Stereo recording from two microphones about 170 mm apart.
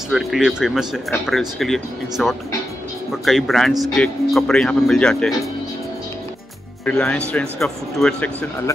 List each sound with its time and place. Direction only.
0.1 s speech: centre (ahead or behind)
6.8 s speech: 5° left (ahead or behind)